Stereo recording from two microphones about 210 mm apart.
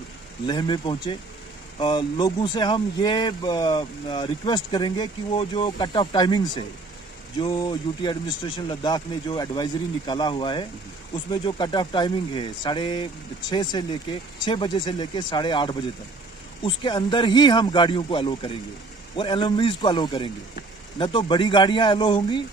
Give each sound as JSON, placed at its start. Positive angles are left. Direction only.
{"t": 0.5, "sound": "speech", "side_deg": 20}